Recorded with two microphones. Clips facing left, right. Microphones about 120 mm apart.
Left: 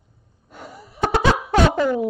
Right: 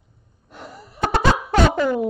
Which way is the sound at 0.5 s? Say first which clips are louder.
Even; centre (ahead or behind).